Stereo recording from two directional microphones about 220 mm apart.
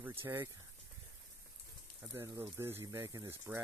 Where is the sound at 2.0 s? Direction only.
10° right (ahead or behind).